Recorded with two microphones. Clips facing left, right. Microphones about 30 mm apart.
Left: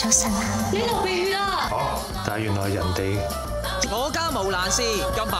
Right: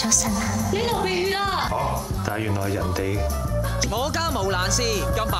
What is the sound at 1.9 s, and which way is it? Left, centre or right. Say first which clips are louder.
Speech: even; left.